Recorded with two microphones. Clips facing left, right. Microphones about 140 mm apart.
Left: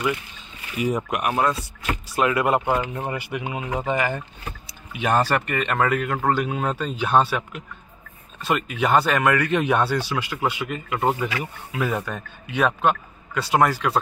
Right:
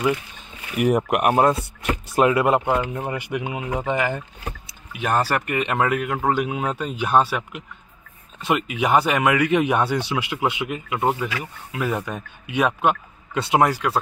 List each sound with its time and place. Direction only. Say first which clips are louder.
0.7 s speech: right 5 dB; 60° right (ahead or behind)
1.3 s speech: right 3 dB; 25° right (ahead or behind)
2.5 s speech: right 1 dB; 5° left (ahead or behind)
3.2 s a man's voice: right 2 dB; 15° right (ahead or behind)
4.9 s a man's voice: left 1 dB; 5° right (ahead or behind); by 10.8 s 20° right (ahead or behind)
10.9 s a man's voice: even; 5° right (ahead or behind)